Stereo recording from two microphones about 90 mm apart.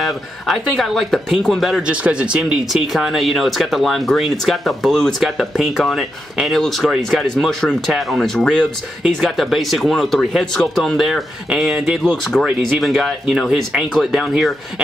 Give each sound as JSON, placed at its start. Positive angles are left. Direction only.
{"t": 0.0, "sound": "speech", "side_deg": 0}
{"t": 1.9, "sound": "speech", "side_deg": -15}